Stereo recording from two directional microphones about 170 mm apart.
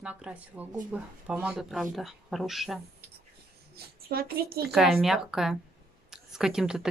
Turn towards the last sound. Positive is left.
turn(degrees=-5)  # may be behind; listen again after turning